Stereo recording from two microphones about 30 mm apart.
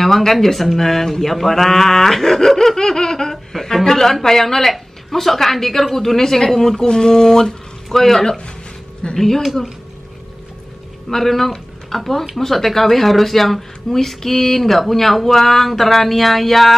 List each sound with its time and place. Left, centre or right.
0.0 s speech: centre
6.9 s speech: left
11.1 s a woman's voice: centre